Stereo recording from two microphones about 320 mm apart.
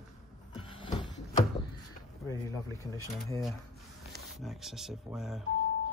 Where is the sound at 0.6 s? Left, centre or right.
Centre.